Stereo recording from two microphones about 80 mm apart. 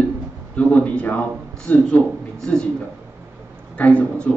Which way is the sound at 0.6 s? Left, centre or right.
Centre.